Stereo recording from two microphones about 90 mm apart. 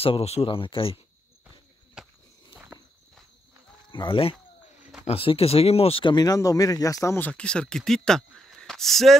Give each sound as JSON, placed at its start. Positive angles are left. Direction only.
{"t": 0.0, "sound": "speech", "side_deg": 85}
{"t": 2.0, "sound": "walk", "side_deg": -5}
{"t": 2.5, "sound": "walk", "side_deg": -25}
{"t": 3.9, "sound": "speech", "side_deg": 70}
{"t": 5.1, "sound": "speech", "side_deg": 90}
{"t": 6.1, "sound": "speech", "side_deg": 40}
{"t": 7.2, "sound": "speech", "side_deg": 15}